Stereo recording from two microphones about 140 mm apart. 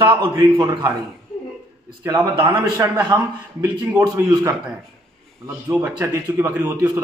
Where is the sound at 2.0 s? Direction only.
25° right (ahead or behind).